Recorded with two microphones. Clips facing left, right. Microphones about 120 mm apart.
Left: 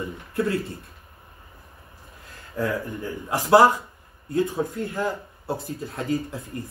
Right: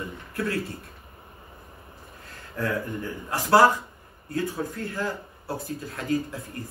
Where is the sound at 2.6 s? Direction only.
15° left (ahead or behind).